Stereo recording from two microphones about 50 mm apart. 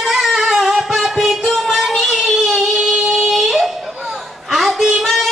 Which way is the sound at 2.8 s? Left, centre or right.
Centre.